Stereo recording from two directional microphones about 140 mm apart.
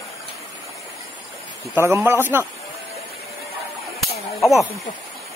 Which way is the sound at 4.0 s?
Centre (ahead or behind).